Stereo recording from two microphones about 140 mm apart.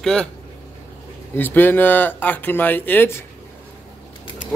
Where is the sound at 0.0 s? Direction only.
5° left (ahead or behind).